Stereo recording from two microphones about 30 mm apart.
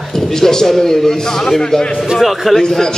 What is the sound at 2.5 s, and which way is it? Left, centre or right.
Speech, centre.